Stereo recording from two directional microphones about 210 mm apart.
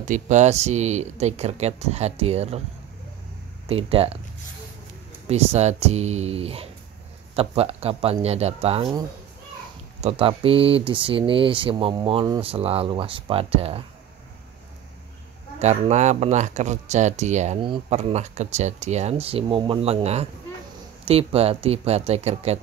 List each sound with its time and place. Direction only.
0.1 s speech: 35° right (ahead or behind)
3.6 s speech: 25° right (ahead or behind)
5.3 s speech: 30° right (ahead or behind)
15.6 s speech: 30° right (ahead or behind)